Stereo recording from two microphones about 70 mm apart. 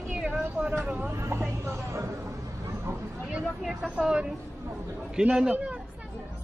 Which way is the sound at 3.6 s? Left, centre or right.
Centre.